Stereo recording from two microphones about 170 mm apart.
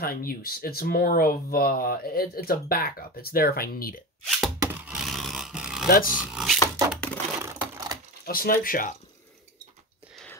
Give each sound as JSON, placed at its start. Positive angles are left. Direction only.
{"t": 0.0, "sound": "speech", "side_deg": 60}
{"t": 4.3, "sound": "a sound", "side_deg": -5}
{"t": 5.9, "sound": "speech", "side_deg": 55}
{"t": 6.1, "sound": "a sound", "side_deg": 0}
{"t": 7.4, "sound": "typewriter", "side_deg": -20}
{"t": 8.3, "sound": "speech", "side_deg": 60}